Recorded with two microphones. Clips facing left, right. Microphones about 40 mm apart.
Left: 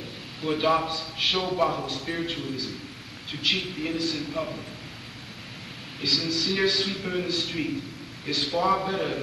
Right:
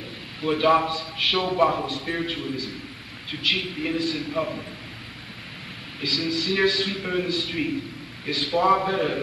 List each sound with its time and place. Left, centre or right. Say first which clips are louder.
0.4 s a man's voice: right 4 dB; centre
5.9 s a man's voice: right 1 dB; centre